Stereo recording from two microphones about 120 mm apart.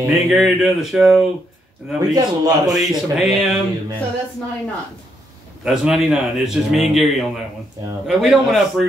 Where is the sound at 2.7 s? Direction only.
Centre (ahead or behind).